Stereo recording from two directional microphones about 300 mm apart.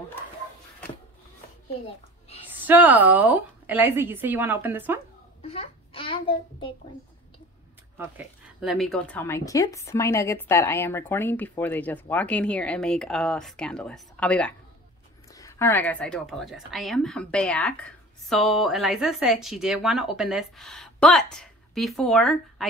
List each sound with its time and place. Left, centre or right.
2.5 s a woman's voice: centre
5.4 s a child's voice: centre
8.0 s speech: centre